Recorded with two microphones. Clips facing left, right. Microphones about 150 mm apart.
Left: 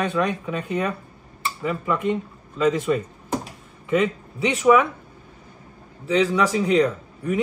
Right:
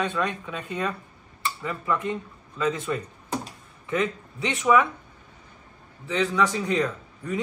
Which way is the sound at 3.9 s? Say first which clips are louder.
Left 5 dB; 10° left (ahead or behind).